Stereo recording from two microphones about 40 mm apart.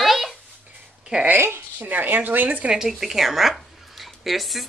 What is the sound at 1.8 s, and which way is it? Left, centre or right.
Speech, right.